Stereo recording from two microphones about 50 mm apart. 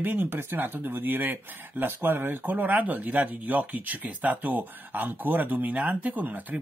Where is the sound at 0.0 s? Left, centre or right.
Right.